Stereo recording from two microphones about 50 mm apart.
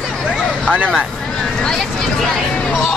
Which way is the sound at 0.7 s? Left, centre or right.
Right.